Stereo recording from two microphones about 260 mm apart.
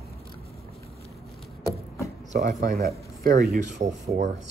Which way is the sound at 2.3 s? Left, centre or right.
Right.